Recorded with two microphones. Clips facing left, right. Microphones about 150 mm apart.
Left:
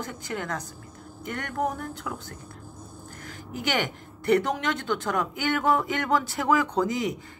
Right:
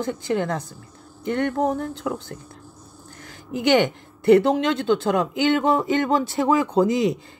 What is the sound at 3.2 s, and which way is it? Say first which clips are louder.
A woman's voice: right 10 dB; 25° right (ahead or behind).